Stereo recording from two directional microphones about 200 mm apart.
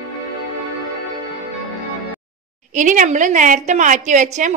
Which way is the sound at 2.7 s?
40° right (ahead or behind).